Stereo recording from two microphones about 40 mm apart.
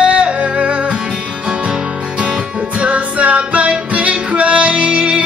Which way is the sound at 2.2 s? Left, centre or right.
Right.